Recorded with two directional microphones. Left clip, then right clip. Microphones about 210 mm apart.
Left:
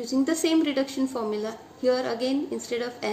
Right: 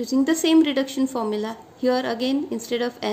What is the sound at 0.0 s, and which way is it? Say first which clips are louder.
A woman's voice: right 4 dB; 50° right (ahead or behind).